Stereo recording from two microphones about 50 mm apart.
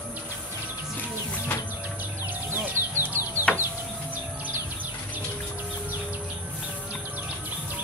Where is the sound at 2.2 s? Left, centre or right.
Right.